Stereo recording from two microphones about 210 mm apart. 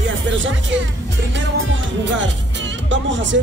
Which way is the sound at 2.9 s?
60° right (ahead or behind).